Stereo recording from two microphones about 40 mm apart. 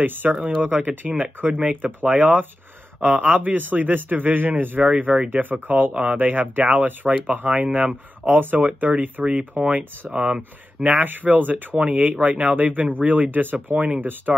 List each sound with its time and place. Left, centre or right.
0.0 s speech: right
4.8 s speech: right
5.3 s speech: right
7.4 s speech: right
9.2 s speech: right
11.0 s speech: right